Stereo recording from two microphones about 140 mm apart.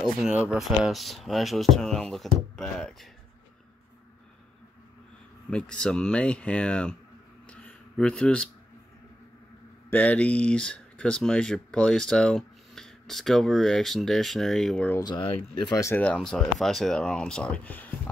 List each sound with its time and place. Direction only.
0.0 s speech: 5° right (ahead or behind)
5.5 s speech: 5° left (ahead or behind)
7.4 s a sound: 10° left (ahead or behind)
9.8 s speech: 10° left (ahead or behind)
15.0 s speech: 30° left (ahead or behind)
15.8 s speech: 10° left (ahead or behind)